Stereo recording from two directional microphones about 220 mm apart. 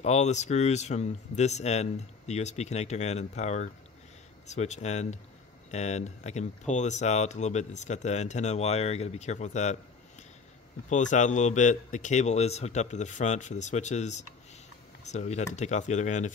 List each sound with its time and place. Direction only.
0.0 s speech: 30° left (ahead or behind)
10.9 s speech: 35° left (ahead or behind)